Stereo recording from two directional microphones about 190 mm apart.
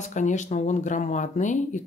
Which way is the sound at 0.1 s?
40° left (ahead or behind).